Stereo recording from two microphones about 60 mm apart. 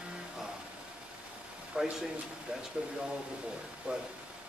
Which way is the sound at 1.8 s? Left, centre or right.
Centre.